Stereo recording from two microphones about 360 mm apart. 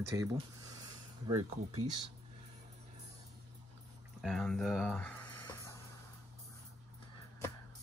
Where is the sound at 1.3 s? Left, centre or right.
Right.